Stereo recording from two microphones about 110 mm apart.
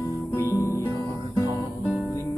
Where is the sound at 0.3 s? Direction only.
25° left (ahead or behind).